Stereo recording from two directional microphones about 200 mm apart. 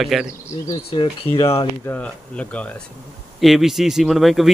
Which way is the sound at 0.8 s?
30° left (ahead or behind).